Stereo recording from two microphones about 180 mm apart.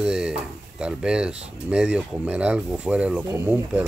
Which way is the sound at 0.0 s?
5° right (ahead or behind).